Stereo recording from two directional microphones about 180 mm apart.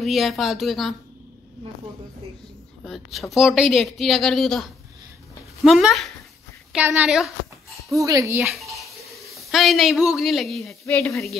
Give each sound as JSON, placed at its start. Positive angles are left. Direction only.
{"t": 0.0, "sound": "speech", "side_deg": 0}
{"t": 2.8, "sound": "speech", "side_deg": 0}
{"t": 7.9, "sound": "speech", "side_deg": -15}
{"t": 8.5, "sound": "stir", "side_deg": 0}
{"t": 9.5, "sound": "speech", "side_deg": 0}